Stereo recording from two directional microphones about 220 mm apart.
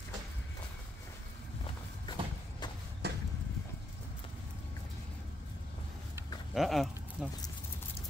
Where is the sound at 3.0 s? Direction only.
45° right (ahead or behind).